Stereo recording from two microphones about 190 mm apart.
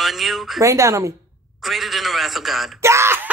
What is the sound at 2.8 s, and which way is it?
Speech, 15° right (ahead or behind).